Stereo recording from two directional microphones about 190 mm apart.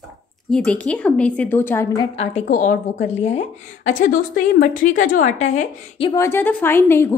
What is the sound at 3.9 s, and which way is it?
A woman's voice, 45° left (ahead or behind).